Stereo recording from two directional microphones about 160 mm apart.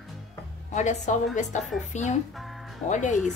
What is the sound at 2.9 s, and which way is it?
Speech, 50° left (ahead or behind).